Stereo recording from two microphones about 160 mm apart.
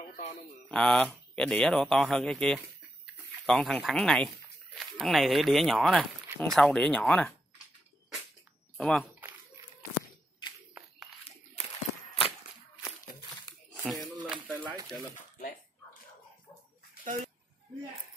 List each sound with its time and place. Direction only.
0.7 s speech: 5° left (ahead or behind)
8.7 s speech: 5° left (ahead or behind)
11.6 s walk: 40° left (ahead or behind)
13.8 s a sound: centre (ahead or behind)
15.3 s dog: 55° left (ahead or behind)
17.0 s speech: 50° right (ahead or behind)